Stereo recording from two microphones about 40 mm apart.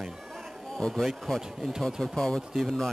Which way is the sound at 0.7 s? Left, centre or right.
Centre.